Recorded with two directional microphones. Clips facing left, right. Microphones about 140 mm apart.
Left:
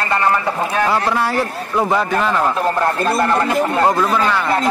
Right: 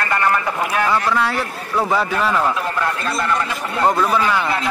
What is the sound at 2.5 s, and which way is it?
Speech, 40° left (ahead or behind).